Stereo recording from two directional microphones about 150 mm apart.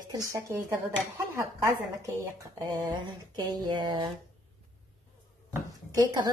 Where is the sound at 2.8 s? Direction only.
30° right (ahead or behind).